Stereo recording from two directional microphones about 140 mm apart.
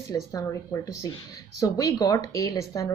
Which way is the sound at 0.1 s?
25° left (ahead or behind).